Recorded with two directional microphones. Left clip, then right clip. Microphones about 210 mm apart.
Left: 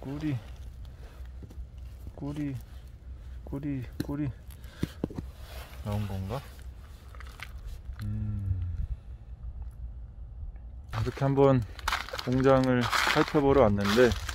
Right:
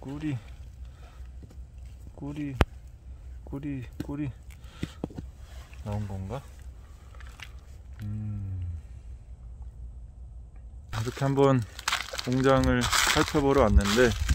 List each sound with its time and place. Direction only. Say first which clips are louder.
0.1 s a sound: even; centre (ahead or behind)
2.1 s speech: right 6 dB; centre (ahead or behind)
4.1 s a sound: right 1 dB; centre (ahead or behind)
5.9 s speech: left 1 dB; centre (ahead or behind)
10.9 s a sound: even; 5° left (ahead or behind)
11.1 s speech: even; 10° right (ahead or behind)
11.8 s crumpling: right 1 dB; 15° left (ahead or behind)
12.4 s speech: even; 10° right (ahead or behind)
12.8 s speech: right 1 dB; 5° left (ahead or behind)